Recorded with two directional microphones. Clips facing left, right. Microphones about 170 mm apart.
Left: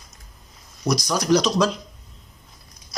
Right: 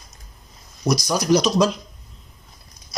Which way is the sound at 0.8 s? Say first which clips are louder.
Right 2 dB; 10° right (ahead or behind).